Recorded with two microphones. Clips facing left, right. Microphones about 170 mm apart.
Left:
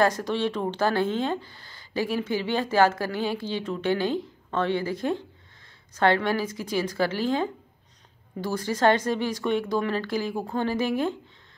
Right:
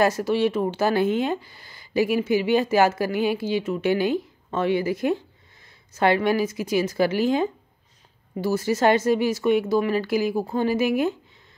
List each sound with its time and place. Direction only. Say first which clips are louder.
0.0 s speech: right 3 dB; 10° right (ahead or behind)